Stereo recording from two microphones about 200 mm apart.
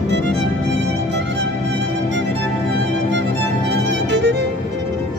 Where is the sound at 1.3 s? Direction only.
60° right (ahead or behind).